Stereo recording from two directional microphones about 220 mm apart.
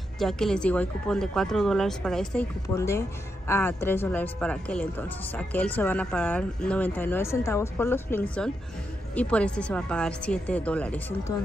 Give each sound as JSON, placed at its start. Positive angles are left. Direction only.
{"t": 0.2, "sound": "speech", "side_deg": 0}
{"t": 2.7, "sound": "speech", "side_deg": 15}